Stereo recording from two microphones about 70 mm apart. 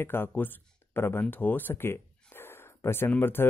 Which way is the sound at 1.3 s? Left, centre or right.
Left.